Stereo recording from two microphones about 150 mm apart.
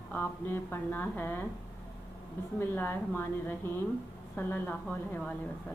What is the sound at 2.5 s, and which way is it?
A woman's voice, 15° left (ahead or behind).